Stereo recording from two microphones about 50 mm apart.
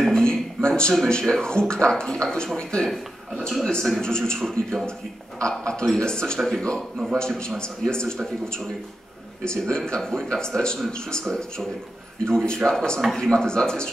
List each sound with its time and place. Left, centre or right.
0.1 s a man's voice: centre